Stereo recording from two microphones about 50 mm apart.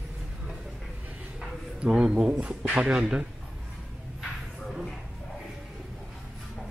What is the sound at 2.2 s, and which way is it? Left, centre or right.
Speech, right.